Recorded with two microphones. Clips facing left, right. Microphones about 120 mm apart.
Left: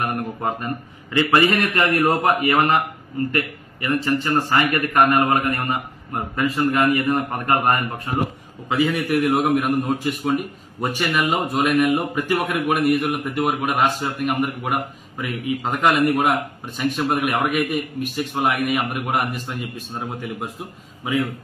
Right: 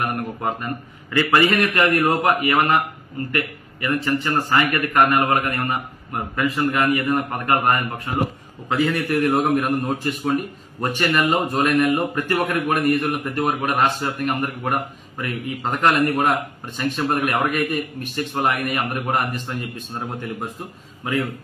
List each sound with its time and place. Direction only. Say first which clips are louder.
1.1 s a man's voice: even; 20° left (ahead or behind)
8.6 s a man's voice: even; centre (ahead or behind)